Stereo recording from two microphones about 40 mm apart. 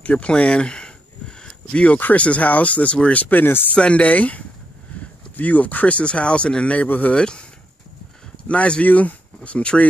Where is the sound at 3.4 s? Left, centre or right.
Left.